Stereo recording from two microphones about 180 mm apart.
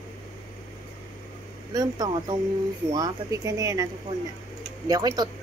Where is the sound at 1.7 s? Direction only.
20° right (ahead or behind).